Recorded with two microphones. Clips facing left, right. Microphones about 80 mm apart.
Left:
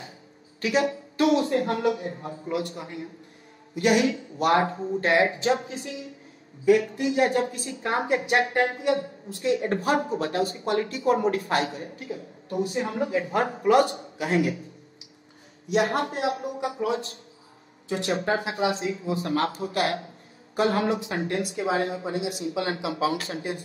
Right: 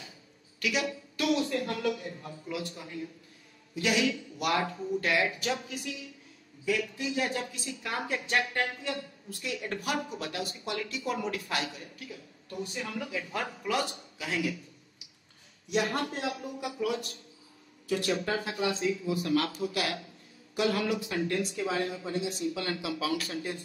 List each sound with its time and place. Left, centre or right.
0.6 s a woman's voice: left
3.7 s a woman's voice: left
15.7 s a woman's voice: left
22.4 s a woman's voice: left